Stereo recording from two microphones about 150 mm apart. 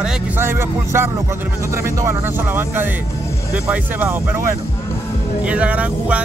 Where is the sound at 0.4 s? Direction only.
15° right (ahead or behind).